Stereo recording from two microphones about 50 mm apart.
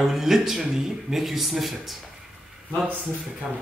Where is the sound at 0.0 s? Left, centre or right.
Centre.